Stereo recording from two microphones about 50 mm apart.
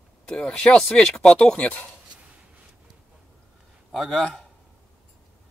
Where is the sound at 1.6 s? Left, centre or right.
Left.